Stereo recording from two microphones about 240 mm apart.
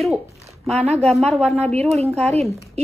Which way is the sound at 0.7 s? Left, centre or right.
Right.